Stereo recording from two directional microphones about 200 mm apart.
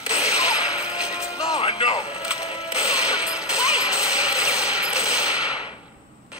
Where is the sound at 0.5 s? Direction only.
5° right (ahead or behind).